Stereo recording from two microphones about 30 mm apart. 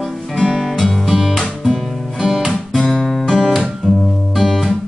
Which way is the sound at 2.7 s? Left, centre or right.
Left.